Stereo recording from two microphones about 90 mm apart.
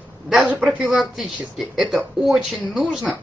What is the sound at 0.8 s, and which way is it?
A man's voice, centre (ahead or behind).